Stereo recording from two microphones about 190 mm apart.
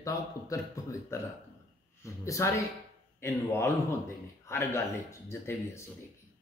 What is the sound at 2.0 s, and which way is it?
Speech, 15° left (ahead or behind).